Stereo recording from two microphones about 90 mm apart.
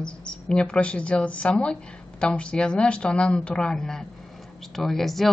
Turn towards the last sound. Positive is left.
turn(degrees=0)  # may be behind; listen again after turning